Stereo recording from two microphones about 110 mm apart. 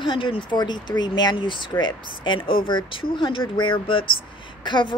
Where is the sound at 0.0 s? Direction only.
50° left (ahead or behind).